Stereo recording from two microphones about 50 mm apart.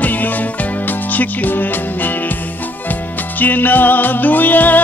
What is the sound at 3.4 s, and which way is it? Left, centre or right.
Music, left.